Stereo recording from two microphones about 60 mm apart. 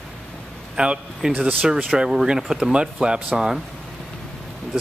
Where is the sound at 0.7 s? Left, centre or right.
Centre.